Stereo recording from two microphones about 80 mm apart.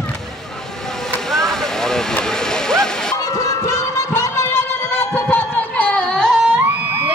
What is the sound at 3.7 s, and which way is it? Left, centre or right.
Music, left.